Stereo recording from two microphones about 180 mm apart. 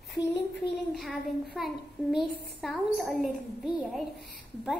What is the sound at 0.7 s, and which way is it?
A child's voice, centre (ahead or behind).